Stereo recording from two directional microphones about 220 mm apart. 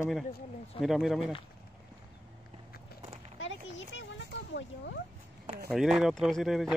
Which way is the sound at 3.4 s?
55° left (ahead or behind).